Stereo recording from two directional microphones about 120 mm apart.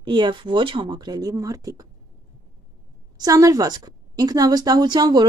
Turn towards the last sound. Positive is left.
turn(degrees=-35)  # may be behind; listen again after turning